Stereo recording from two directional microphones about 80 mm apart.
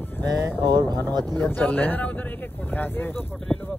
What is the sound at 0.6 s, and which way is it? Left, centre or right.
Speech, right.